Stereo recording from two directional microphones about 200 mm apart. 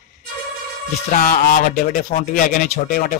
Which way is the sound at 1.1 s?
45° left (ahead or behind).